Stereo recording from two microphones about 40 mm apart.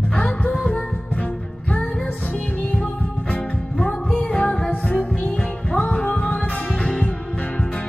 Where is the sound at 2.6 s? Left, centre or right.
Left.